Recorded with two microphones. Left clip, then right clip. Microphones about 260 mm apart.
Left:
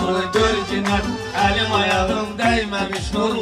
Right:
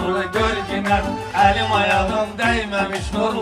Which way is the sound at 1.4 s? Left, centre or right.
Right.